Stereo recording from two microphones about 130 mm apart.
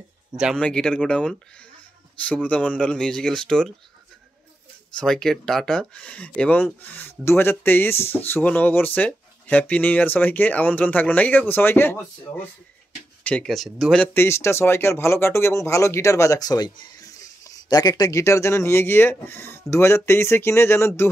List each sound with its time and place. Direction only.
0.6 s speech: 5° left (ahead or behind)
4.9 s speech: 5° left (ahead or behind)
14.1 s speech: 20° left (ahead or behind)